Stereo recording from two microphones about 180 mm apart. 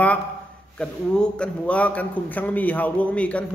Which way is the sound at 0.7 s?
5° left (ahead or behind).